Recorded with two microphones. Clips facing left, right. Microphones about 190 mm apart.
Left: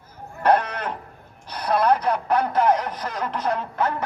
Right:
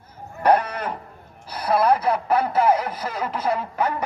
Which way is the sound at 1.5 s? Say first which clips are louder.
Right 1 dB; 5° right (ahead or behind).